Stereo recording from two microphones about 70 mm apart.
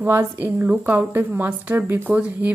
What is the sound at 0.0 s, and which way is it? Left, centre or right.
Speech, right.